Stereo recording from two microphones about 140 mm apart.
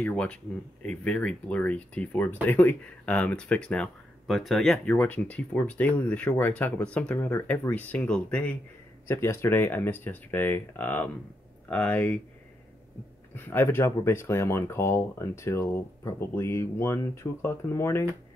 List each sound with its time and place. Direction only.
0.0 s speech: 10° left (ahead or behind)
13.5 s speech: 15° left (ahead or behind)